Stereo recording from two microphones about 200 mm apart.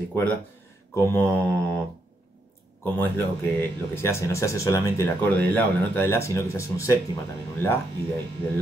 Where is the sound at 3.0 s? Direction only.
10° left (ahead or behind).